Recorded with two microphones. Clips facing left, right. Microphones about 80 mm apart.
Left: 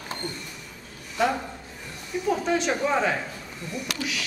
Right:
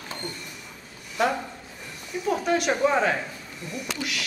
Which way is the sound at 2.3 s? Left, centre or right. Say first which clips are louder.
Right 1 dB; centre.